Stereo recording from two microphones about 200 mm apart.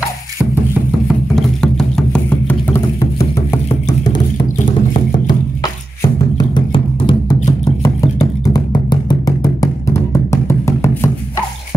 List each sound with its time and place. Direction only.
1.0 s music: centre (ahead or behind)
6.3 s music: 20° left (ahead or behind)
8.5 s music: 20° left (ahead or behind)